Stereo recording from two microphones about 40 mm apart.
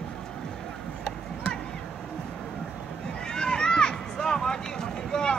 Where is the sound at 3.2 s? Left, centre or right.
Centre.